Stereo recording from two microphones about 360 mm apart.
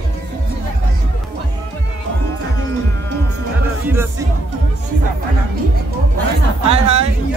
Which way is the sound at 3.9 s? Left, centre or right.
Centre.